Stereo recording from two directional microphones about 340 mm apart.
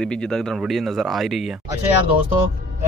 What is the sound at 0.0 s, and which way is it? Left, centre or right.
Speech, centre.